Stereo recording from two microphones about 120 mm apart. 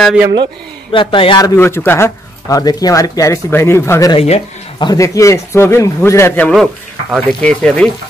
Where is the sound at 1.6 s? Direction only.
20° left (ahead or behind).